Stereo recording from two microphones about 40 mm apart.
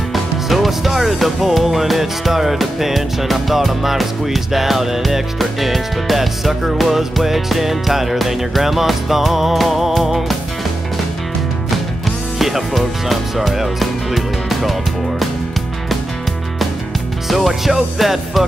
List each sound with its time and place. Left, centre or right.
0.1 s music: centre
12.4 s speech: centre
17.3 s music: centre